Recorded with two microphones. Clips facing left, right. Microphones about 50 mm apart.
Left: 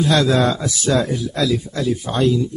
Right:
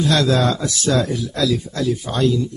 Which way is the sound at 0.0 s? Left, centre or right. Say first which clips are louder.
Left 1 dB; centre.